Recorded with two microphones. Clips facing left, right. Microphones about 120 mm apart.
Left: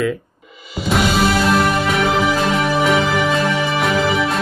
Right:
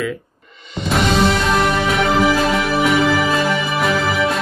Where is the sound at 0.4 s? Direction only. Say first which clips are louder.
Right 1 dB; 5° left (ahead or behind).